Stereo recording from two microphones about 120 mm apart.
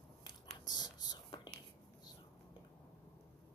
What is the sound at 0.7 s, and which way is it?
Whispering, 35° left (ahead or behind).